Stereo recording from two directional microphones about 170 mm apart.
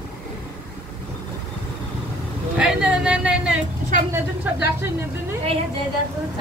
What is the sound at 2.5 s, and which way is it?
Vehicle, 5° right (ahead or behind).